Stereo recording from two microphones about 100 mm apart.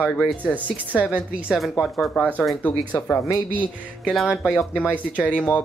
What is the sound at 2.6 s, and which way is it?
Speech, 15° left (ahead or behind).